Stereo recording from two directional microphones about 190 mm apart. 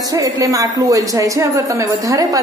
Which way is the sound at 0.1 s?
15° right (ahead or behind).